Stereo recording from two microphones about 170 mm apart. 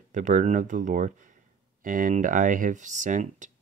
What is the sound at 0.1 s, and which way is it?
Speech, 45° right (ahead or behind).